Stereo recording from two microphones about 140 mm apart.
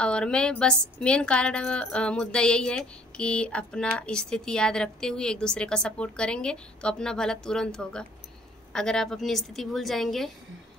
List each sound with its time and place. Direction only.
0.0 s speech: 5° left (ahead or behind)